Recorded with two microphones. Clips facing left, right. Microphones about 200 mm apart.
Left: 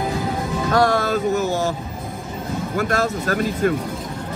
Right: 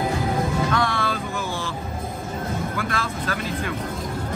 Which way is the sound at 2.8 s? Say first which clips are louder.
Left 6 dB; 45° left (ahead or behind).